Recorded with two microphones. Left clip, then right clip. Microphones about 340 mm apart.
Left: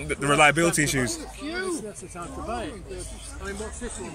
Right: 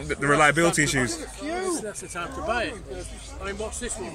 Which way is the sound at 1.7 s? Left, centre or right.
Right.